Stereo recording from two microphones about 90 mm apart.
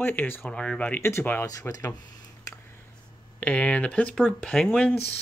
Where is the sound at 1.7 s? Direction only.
40° left (ahead or behind).